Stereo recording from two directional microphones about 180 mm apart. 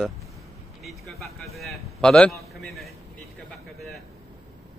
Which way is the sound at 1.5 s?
Centre (ahead or behind).